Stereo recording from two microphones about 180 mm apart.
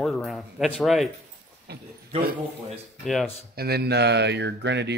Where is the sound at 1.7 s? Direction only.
65° right (ahead or behind).